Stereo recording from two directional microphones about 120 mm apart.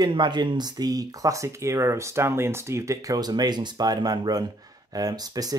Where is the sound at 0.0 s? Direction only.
40° right (ahead or behind).